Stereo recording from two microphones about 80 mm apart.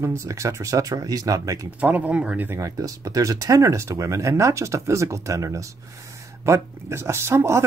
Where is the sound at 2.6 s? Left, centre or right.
Right.